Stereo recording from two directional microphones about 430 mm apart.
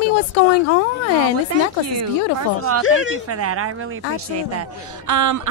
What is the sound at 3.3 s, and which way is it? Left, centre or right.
Speech, right.